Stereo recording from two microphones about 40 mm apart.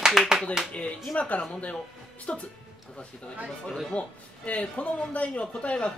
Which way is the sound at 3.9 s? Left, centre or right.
Left.